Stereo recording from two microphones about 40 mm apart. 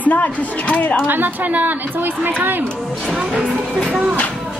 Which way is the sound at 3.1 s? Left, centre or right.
Centre.